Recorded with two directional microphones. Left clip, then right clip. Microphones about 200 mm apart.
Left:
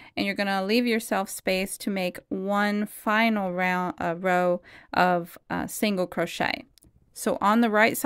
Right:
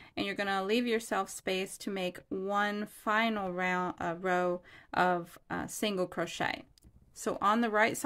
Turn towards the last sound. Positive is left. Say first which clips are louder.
# left 7 dB
turn(degrees=40)  # may be behind; listen again after turning